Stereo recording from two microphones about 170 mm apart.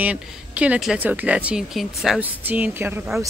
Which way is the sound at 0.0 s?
5° right (ahead or behind).